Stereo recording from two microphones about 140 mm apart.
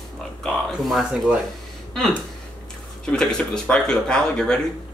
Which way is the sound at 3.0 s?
5° left (ahead or behind).